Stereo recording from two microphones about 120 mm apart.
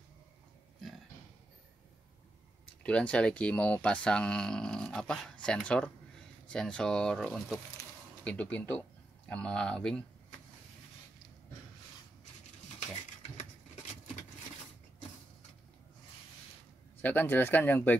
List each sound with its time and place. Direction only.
2.8 s speech: 10° left (ahead or behind)
17.0 s speech: 15° left (ahead or behind)